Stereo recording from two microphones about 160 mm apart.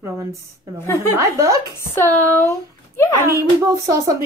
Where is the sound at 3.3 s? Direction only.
20° right (ahead or behind).